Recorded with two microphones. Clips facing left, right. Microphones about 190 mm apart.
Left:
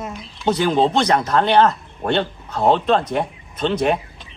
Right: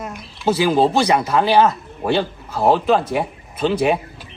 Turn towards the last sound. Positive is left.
turn(degrees=-5)  # may be behind; listen again after turning